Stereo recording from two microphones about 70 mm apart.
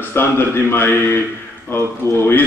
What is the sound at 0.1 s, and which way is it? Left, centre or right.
Speech, left.